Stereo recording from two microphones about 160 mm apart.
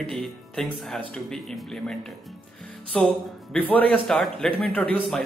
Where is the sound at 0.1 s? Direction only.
Centre (ahead or behind).